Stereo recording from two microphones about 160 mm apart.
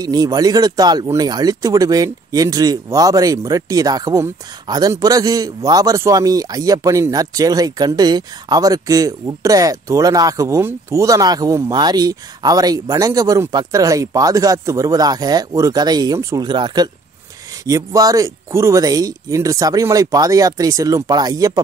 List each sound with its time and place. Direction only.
0.0 s speech: 25° right (ahead or behind)